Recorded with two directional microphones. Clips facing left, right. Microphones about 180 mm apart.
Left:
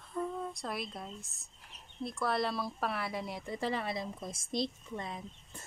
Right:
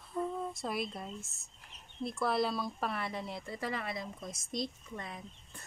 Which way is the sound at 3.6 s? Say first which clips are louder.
Left 3 dB; 30° left (ahead or behind).